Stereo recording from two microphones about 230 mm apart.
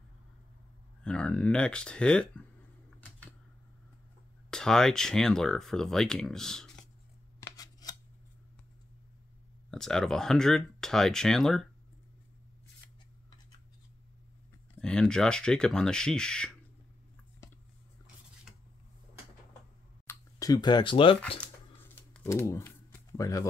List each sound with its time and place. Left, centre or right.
1.0 s speech: centre
4.5 s speech: centre
7.3 s scissors: centre
9.7 s speech: centre
14.8 s speech: centre
20.1 s speech: centre
21.4 s a sound: centre